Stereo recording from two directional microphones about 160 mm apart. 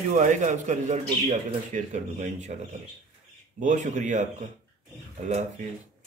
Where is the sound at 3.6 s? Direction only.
50° right (ahead or behind).